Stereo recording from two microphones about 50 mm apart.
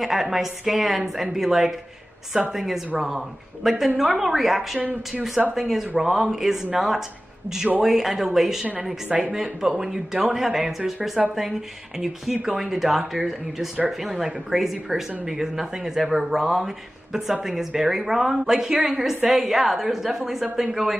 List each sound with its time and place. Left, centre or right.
0.0 s speech: centre
4.7 s speech: right
5.5 s speech: centre
12.4 s speech: centre